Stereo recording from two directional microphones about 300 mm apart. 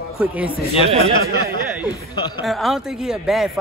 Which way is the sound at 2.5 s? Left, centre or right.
Centre.